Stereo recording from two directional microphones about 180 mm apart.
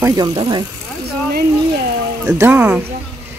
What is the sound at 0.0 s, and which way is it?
Speech, 20° right (ahead or behind).